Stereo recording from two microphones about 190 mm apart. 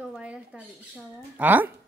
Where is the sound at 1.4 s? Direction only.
10° right (ahead or behind).